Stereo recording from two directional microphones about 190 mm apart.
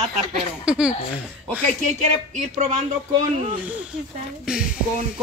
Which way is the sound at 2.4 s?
40° right (ahead or behind).